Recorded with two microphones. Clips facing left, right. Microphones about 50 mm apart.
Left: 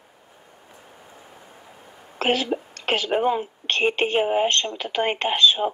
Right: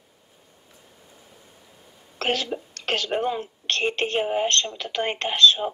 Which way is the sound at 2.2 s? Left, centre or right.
Centre.